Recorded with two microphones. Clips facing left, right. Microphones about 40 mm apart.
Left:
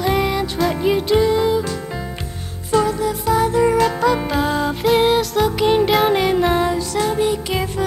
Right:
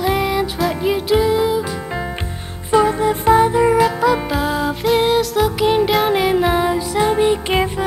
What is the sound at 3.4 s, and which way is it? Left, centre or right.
Music, centre.